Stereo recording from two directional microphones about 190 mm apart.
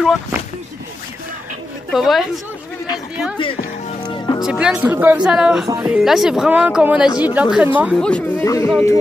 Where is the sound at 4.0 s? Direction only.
25° left (ahead or behind).